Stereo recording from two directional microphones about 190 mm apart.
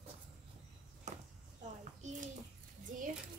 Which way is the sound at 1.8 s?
40° right (ahead or behind).